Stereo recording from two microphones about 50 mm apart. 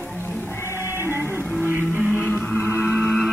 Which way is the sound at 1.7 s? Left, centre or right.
Right.